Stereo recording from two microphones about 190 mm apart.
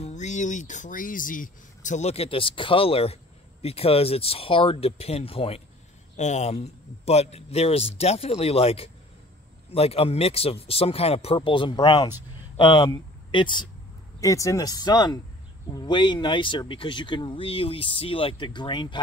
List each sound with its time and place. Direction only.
0.0 s a man's voice: 40° left (ahead or behind)